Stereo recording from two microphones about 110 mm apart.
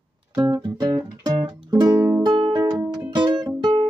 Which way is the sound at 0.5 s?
40° right (ahead or behind).